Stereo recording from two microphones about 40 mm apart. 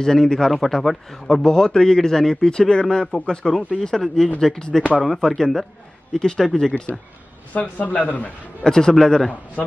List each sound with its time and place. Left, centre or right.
0.0 s a man's voice: centre
3.4 s a man's voice: centre
6.1 s a man's voice: centre
7.5 s speech: left
8.6 s a man's voice: centre